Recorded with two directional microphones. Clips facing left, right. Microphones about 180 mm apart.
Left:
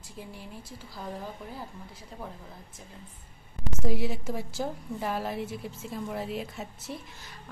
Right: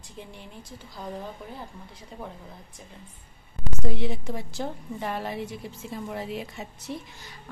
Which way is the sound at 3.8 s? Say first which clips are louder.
Even; 5° left (ahead or behind).